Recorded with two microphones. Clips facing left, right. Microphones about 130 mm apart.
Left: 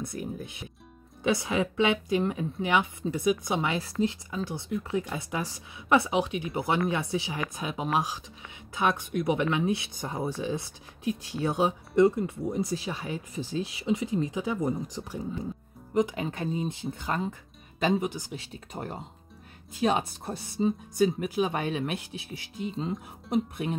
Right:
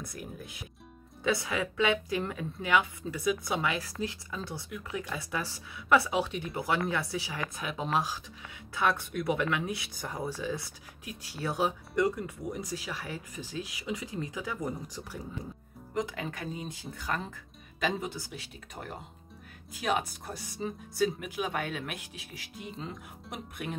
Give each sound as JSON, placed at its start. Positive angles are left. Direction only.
{"t": 0.0, "sound": "speech", "side_deg": 25}